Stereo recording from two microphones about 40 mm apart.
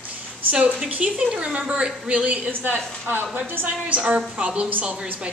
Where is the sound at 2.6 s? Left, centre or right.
Right.